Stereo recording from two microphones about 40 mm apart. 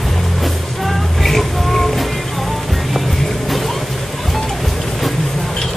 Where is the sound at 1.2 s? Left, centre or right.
Centre.